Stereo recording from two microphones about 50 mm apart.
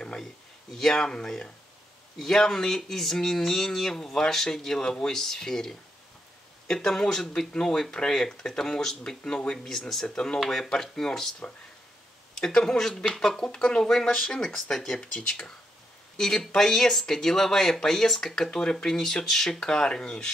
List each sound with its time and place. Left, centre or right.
0.7 s speech: centre
9.3 s speech: left
9.7 s speech: centre
10.4 s speech: centre
12.4 s speech: centre